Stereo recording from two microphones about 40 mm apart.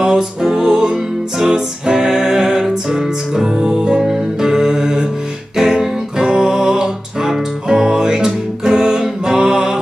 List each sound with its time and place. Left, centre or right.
0.0 s music: centre